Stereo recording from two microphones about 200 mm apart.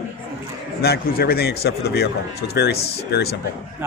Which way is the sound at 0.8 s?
50° left (ahead or behind).